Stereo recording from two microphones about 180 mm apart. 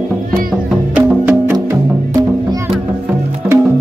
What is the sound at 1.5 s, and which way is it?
Music, 25° right (ahead or behind).